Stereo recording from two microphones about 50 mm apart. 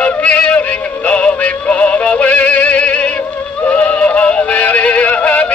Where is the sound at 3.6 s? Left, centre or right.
Left.